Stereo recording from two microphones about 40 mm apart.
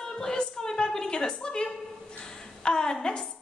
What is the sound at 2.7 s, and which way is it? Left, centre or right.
Speech, centre.